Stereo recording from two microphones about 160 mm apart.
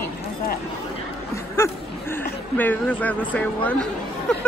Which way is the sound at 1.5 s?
15° left (ahead or behind).